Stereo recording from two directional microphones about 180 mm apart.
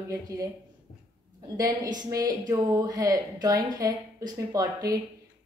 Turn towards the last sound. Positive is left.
turn(degrees=-20)  # may be behind; listen again after turning